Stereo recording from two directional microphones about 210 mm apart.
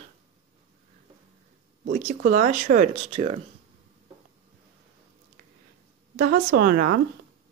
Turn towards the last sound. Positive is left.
turn(degrees=-45)  # may be behind; listen again after turning